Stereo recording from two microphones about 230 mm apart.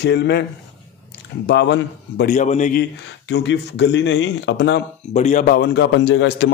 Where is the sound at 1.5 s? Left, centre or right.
Left.